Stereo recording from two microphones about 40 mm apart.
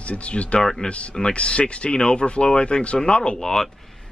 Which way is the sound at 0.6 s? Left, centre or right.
Centre.